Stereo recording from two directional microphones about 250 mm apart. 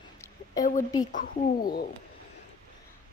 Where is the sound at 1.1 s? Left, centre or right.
Left.